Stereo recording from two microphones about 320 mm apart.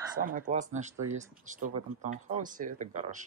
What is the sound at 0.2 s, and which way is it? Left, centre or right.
Speech, right.